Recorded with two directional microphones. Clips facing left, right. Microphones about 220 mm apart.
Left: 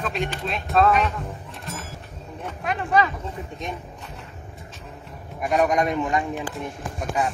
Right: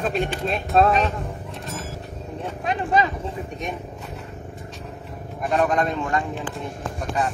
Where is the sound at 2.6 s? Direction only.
25° right (ahead or behind).